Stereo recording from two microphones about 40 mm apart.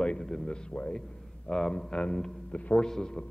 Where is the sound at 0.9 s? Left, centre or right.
Centre.